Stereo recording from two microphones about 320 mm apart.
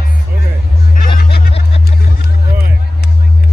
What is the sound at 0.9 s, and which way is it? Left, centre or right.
Hubbub, left.